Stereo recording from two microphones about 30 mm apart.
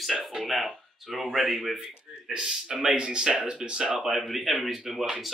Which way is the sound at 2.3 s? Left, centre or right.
Right.